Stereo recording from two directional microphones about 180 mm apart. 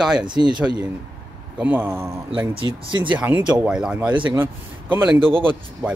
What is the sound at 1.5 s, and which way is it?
Speech, 10° right (ahead or behind).